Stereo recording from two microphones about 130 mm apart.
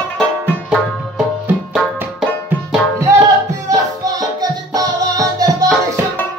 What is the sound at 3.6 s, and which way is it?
Music, 30° right (ahead or behind).